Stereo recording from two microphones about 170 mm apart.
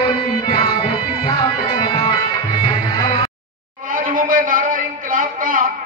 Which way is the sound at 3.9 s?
55° right (ahead or behind).